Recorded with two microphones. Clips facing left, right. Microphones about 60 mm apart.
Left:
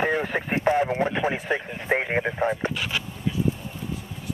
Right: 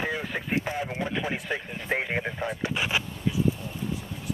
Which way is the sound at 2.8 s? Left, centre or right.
Centre.